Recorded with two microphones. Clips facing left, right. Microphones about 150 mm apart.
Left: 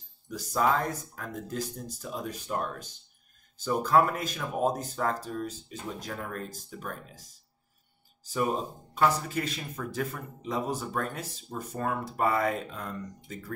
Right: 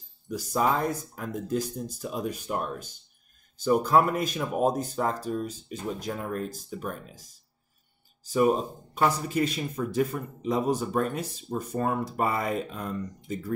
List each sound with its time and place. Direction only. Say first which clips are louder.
0.3 s speech: right 1 dB; 15° right (ahead or behind)
8.9 s speech: right 1 dB; 15° right (ahead or behind)